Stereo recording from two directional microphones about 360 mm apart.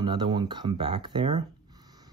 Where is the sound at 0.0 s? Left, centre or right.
Centre.